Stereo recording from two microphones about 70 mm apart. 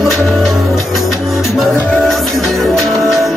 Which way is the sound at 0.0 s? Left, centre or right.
Centre.